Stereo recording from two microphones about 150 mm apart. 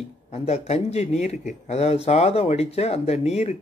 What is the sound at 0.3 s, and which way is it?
A man's voice, 45° left (ahead or behind).